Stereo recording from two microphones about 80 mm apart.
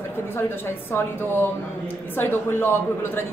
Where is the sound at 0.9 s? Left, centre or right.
Left.